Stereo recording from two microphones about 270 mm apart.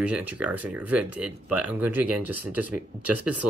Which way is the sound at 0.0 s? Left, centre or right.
Centre.